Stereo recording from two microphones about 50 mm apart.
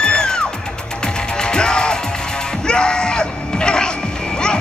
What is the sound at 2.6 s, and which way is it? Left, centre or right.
Crowd, centre.